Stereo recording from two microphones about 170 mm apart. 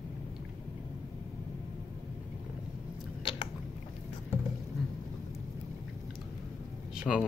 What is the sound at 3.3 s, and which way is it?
Biting, 30° left (ahead or behind).